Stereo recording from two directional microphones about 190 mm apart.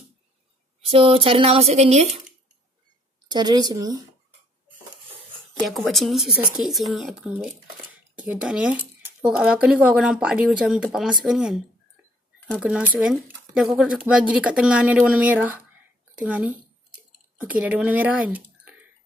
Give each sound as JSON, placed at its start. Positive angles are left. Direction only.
{"t": 0.7, "sound": "speech", "side_deg": -30}
{"t": 3.3, "sound": "a woman's voice", "side_deg": -20}
{"t": 5.5, "sound": "speech", "side_deg": 0}